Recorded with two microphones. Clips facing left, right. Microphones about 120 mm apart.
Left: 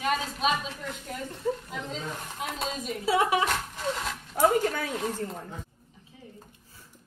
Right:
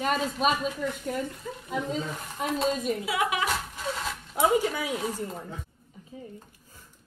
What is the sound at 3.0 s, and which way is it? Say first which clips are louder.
Speech: left 9 dB; 30° left (ahead or behind).